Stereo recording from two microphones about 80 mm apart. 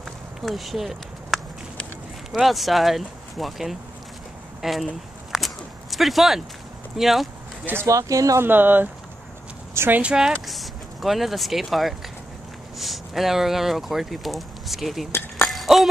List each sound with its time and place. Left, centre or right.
0.4 s speech: centre
5.3 s whip: centre
7.0 s speech: centre
7.8 s speech: right
8.4 s speech: right
10.0 s speech: centre
15.4 s music: centre